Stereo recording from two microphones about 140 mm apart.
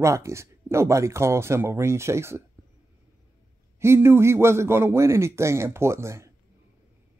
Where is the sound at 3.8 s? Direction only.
20° right (ahead or behind).